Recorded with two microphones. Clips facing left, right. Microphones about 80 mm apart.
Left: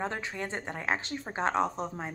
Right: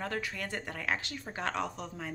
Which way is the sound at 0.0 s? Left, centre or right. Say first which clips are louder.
Left 2 dB; left.